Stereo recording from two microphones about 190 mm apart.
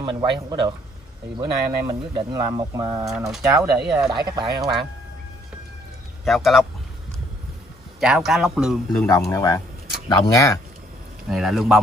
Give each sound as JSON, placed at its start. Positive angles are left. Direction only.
{"t": 0.0, "sound": "speech", "side_deg": -25}
{"t": 6.2, "sound": "a man's voice", "side_deg": 0}
{"t": 8.0, "sound": "a man's voice", "side_deg": 0}
{"t": 9.0, "sound": "speech", "side_deg": 20}
{"t": 11.2, "sound": "a man's voice", "side_deg": 0}